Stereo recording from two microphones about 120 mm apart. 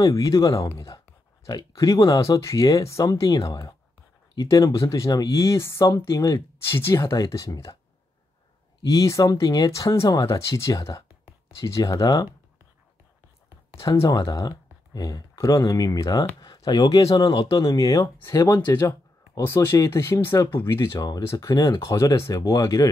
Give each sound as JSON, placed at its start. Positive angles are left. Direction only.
{"t": 0.0, "sound": "speech", "side_deg": 30}
{"t": 8.9, "sound": "speech", "side_deg": 25}
{"t": 13.7, "sound": "speech", "side_deg": 25}